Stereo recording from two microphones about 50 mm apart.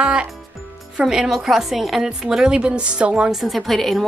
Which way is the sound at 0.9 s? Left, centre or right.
Centre.